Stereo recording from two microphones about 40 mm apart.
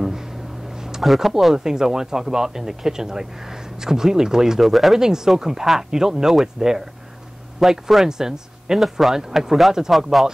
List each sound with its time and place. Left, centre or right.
1.0 s speech: centre
4.6 s speech: centre
4.9 s speech: centre
8.7 s speech: centre